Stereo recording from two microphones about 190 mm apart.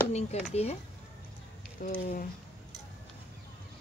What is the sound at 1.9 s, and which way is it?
Speech, 45° left (ahead or behind).